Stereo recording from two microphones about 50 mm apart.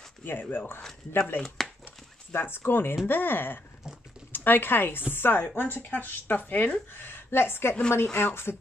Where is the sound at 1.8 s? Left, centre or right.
Left.